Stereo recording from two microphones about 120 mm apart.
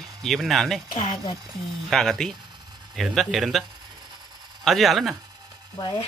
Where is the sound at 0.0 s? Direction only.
Centre (ahead or behind).